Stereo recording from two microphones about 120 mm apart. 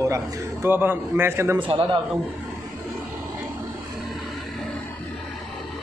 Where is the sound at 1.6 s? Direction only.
45° right (ahead or behind).